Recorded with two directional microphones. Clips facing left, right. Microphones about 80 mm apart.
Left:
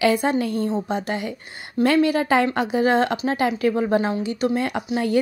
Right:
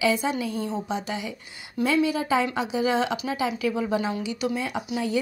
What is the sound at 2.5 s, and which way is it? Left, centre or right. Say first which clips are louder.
A woman's voice: left 5 dB; left.